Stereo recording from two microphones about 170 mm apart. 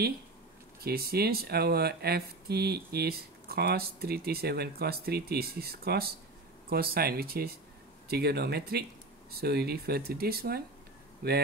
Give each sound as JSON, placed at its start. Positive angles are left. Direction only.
{"t": 0.8, "sound": "speech", "side_deg": -65}